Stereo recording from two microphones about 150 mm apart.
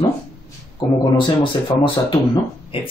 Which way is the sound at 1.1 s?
35° left (ahead or behind).